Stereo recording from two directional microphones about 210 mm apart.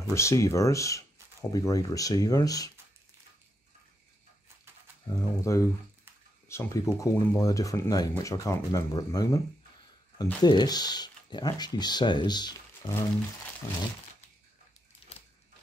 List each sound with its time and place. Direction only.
0.1 s speech: 15° left (ahead or behind)
5.0 s speech: 15° left (ahead or behind)
10.4 s speech: 20° left (ahead or behind)